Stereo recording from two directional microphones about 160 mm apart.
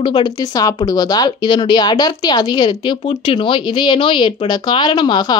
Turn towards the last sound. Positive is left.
turn(degrees=30)  # may be behind; listen again after turning